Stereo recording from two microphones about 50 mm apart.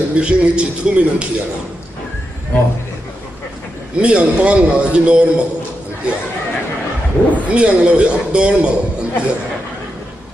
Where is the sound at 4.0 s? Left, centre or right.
Right.